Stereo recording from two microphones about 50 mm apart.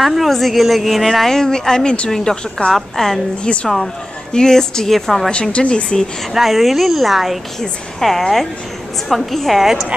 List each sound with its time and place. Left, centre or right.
0.0 s a woman's voice: centre
5.3 s speech: left
6.3 s a woman's voice: centre